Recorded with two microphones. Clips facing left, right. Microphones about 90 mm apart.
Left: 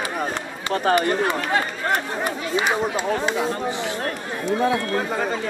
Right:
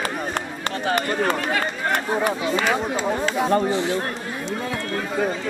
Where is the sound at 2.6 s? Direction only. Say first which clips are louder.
Even; 15° left (ahead or behind).